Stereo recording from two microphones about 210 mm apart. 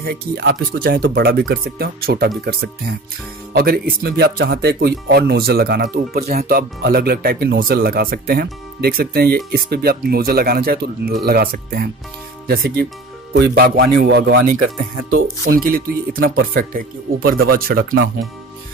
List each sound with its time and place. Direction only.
0.0 s speech: 50° right (ahead or behind)